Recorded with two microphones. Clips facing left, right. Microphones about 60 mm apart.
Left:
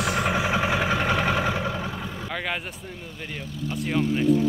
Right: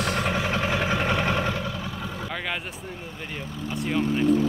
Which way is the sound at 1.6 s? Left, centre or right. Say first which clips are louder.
Left 3 dB; left.